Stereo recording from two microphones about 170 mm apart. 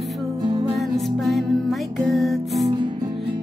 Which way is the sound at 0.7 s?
Centre (ahead or behind).